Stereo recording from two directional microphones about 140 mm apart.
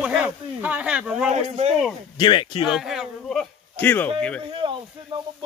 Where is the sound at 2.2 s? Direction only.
40° left (ahead or behind).